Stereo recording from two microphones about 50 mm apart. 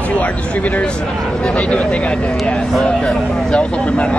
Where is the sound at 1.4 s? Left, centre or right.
Centre.